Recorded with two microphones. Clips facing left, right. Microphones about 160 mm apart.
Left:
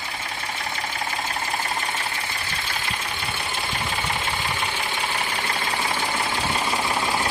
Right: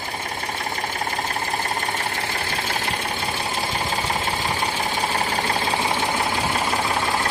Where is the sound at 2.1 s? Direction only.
50° right (ahead or behind).